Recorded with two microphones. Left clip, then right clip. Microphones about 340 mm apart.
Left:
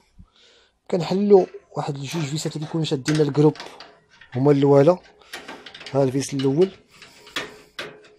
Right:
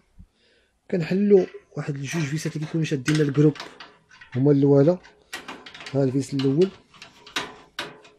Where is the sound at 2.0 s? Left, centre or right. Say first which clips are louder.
Left 1 dB; centre.